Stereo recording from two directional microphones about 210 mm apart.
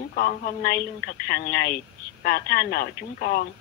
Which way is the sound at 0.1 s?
40° left (ahead or behind).